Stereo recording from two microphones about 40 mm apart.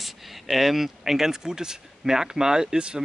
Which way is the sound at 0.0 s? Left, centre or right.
Centre.